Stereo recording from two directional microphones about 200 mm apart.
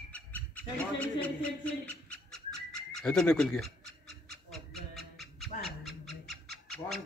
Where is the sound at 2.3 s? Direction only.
5° left (ahead or behind).